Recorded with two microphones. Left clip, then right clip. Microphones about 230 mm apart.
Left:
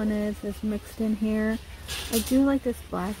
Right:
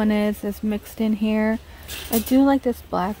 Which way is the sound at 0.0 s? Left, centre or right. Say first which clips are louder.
Right 7 dB; right.